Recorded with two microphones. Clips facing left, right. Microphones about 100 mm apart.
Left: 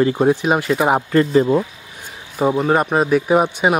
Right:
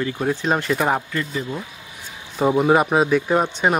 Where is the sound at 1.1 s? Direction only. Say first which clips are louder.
Left 12 dB; 45° left (ahead or behind).